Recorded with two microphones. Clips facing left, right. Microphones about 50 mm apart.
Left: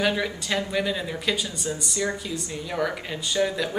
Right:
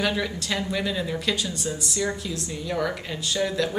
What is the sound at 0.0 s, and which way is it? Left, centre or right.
A woman's voice, centre.